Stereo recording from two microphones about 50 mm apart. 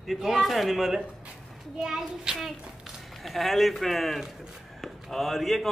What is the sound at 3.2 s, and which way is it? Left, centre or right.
A man's voice, centre.